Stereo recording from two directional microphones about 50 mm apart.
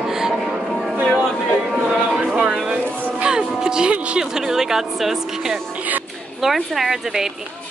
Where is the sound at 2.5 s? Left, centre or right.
Centre.